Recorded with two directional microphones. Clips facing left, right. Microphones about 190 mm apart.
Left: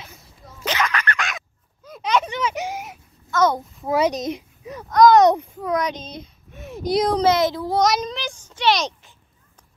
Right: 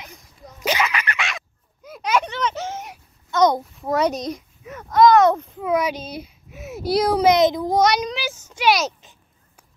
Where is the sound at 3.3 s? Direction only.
15° right (ahead or behind).